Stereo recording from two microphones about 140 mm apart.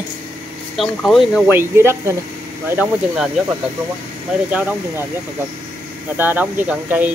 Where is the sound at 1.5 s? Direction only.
15° right (ahead or behind).